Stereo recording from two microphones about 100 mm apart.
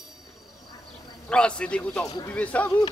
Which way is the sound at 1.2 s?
10° left (ahead or behind).